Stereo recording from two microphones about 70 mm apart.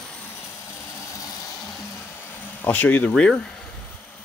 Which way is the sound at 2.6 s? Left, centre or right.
Left.